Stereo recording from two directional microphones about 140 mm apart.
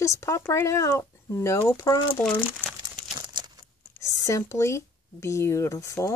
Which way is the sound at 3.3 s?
30° right (ahead or behind).